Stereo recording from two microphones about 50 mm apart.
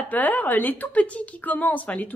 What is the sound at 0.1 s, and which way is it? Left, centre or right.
A woman's voice, left.